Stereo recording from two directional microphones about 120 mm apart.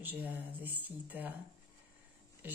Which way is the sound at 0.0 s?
15° right (ahead or behind).